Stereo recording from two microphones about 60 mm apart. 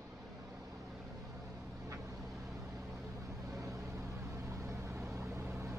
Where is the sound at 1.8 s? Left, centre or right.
Right.